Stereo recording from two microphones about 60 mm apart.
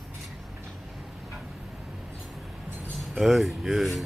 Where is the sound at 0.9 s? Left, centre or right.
Centre.